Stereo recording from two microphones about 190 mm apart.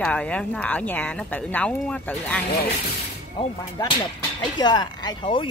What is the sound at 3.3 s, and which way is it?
Speech, 25° left (ahead or behind).